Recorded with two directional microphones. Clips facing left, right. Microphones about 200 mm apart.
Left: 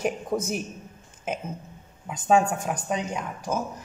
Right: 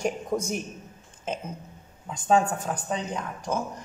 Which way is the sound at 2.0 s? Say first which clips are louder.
Left 1 dB; 10° left (ahead or behind).